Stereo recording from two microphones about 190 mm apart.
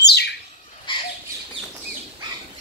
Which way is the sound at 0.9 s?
25° left (ahead or behind).